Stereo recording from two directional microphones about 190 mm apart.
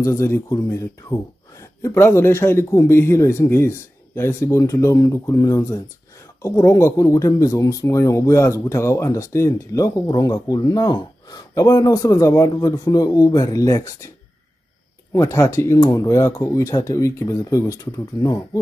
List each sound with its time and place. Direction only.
0.0 s speech: 15° left (ahead or behind)
15.1 s speech: 15° left (ahead or behind)